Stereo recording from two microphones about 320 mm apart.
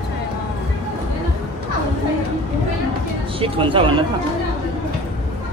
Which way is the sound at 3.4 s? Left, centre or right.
Centre.